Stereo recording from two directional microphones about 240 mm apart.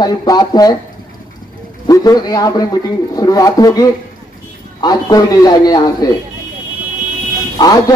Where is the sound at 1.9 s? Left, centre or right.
Centre.